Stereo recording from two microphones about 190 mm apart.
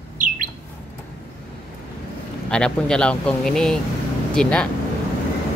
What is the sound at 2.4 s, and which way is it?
Speech, 5° left (ahead or behind).